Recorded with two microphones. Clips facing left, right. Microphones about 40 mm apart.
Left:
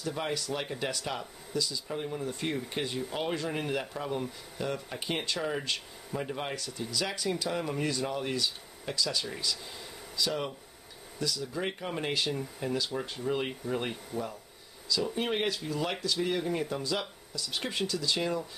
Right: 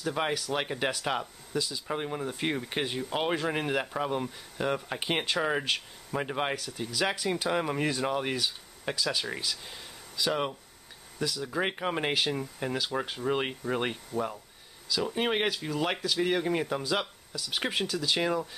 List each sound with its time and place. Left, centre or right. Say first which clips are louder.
0.0 s speech: right 3 dB; right
12.2 s speech: right 2 dB; centre
14.9 s speech: even; centre
15.1 s speech: right 2 dB; right